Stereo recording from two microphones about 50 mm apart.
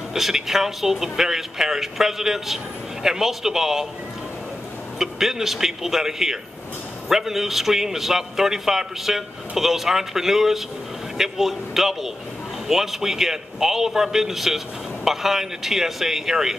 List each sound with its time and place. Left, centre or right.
0.1 s speech: centre
4.9 s a man's voice: centre